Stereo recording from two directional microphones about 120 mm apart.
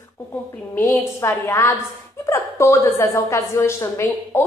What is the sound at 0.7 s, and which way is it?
A woman's voice, 20° left (ahead or behind).